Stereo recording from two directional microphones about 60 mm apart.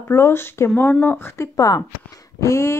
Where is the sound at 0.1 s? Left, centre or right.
Left.